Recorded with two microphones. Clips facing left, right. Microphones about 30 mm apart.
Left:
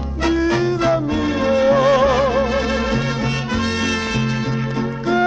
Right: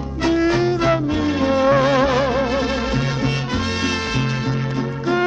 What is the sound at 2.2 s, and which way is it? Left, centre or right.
Music, centre.